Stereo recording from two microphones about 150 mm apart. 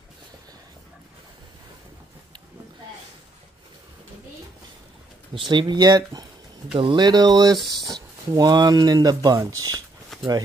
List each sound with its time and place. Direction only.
5.5 s speech: 30° right (ahead or behind)